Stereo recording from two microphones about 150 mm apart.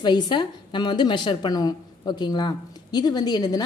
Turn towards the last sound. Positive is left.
turn(degrees=25)  # may be behind; listen again after turning